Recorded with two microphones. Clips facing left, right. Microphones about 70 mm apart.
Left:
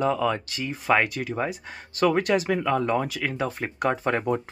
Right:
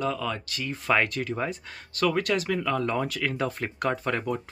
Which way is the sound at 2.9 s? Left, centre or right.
Centre.